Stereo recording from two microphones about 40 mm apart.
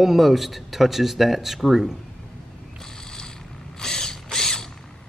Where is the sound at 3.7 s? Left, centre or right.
Centre.